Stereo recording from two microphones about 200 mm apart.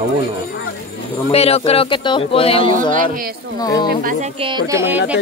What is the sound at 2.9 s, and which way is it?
Speech, 40° right (ahead or behind).